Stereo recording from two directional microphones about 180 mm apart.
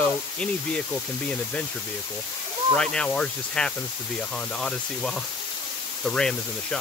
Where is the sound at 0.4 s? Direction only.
5° left (ahead or behind).